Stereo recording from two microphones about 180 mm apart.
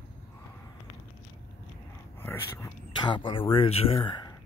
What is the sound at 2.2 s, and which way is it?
Whispering, 15° left (ahead or behind).